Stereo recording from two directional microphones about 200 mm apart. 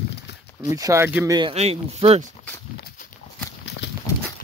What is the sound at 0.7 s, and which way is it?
Speech, 15° right (ahead or behind).